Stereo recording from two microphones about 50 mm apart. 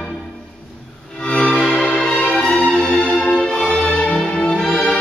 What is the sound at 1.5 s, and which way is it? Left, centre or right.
Music, centre.